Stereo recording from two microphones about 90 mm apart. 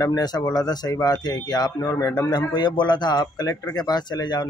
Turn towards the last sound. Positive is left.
turn(degrees=55)  # may be behind; listen again after turning